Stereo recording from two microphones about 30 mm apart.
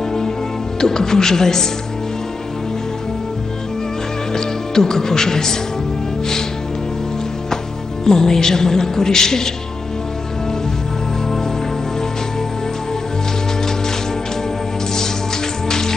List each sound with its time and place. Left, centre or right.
0.7 s speech: centre
4.3 s speech: centre
8.0 s a woman's voice: centre